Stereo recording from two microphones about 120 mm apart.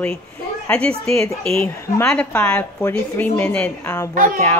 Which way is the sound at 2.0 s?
10° left (ahead or behind).